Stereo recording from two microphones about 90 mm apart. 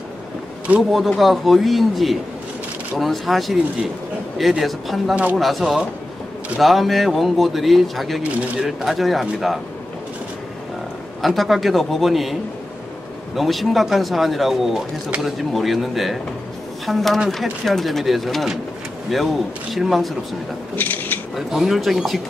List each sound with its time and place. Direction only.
0.9 s speech: centre (ahead or behind)
5.1 s speech: 15° right (ahead or behind)
5.4 s speech: centre (ahead or behind)
11.2 s speech: centre (ahead or behind)
13.4 s speech: centre (ahead or behind)
20.7 s a sound: 20° left (ahead or behind)
21.4 s speech: 5° right (ahead or behind)